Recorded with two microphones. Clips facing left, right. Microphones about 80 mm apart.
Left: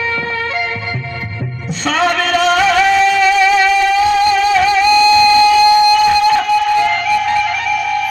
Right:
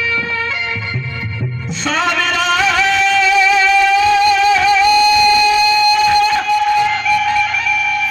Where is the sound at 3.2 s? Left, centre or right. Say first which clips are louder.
Left 2 dB; left.